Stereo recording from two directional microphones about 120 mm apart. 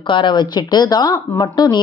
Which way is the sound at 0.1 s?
40° left (ahead or behind).